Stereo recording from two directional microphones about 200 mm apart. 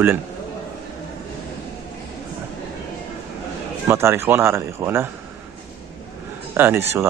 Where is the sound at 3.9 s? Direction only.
10° right (ahead or behind).